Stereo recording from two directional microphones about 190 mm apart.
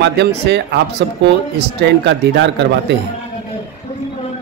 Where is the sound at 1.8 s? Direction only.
70° right (ahead or behind).